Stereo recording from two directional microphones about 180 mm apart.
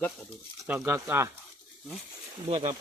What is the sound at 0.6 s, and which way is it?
Speech, 15° right (ahead or behind).